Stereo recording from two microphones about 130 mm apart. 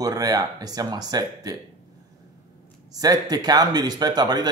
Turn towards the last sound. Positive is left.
turn(degrees=-35)  # may be behind; listen again after turning